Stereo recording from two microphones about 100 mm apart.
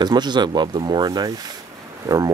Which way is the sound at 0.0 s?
45° right (ahead or behind).